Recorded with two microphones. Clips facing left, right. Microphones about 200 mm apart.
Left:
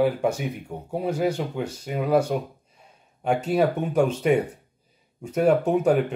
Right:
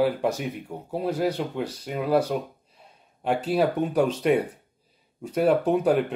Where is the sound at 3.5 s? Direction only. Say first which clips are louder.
Even; 5° right (ahead or behind).